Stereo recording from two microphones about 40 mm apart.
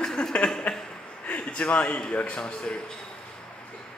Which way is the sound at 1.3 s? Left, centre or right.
Left.